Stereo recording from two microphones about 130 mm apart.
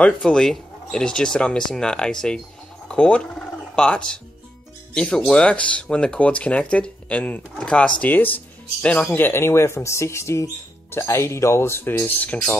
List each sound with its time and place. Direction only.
0.0 s speech: 5° left (ahead or behind)